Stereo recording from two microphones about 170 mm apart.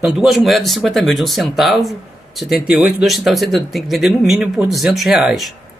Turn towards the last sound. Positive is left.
turn(degrees=0)  # may be behind; listen again after turning